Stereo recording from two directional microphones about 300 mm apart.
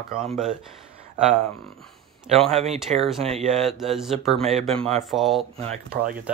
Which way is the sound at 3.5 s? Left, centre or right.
Centre.